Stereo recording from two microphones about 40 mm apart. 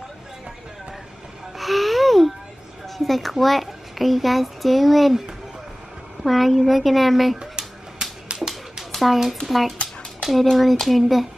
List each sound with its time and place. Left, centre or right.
1.6 s music: centre
3.0 s a child's voice: centre
6.2 s speech: centre
7.3 s a sound: centre
8.9 s speech: centre